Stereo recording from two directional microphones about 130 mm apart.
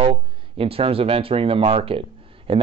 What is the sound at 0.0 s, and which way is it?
A man's voice, 45° right (ahead or behind).